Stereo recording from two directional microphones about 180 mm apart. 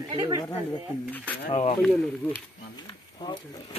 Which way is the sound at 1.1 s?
10° left (ahead or behind).